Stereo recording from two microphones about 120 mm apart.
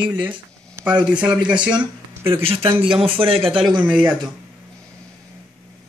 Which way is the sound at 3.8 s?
10° right (ahead or behind).